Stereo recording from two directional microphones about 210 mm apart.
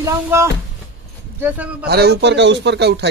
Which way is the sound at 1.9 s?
50° right (ahead or behind).